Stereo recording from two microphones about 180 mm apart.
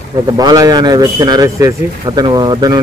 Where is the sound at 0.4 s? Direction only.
20° right (ahead or behind).